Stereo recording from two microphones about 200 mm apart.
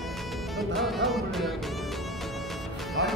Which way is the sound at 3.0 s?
65° right (ahead or behind).